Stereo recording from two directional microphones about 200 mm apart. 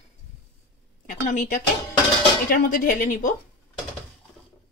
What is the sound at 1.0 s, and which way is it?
Speech, 40° left (ahead or behind).